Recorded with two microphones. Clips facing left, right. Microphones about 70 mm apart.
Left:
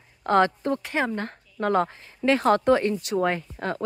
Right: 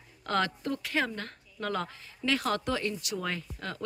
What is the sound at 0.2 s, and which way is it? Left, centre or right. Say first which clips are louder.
A woman's voice: left 9 dB; left.